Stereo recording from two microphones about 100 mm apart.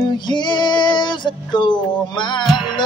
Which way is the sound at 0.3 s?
50° left (ahead or behind).